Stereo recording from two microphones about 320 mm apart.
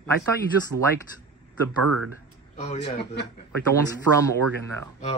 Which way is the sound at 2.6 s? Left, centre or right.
Left.